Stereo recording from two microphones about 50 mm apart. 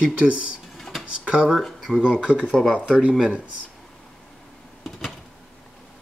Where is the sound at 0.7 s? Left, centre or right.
Centre.